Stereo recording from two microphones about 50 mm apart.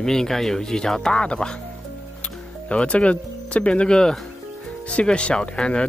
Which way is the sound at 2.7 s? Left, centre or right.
Left.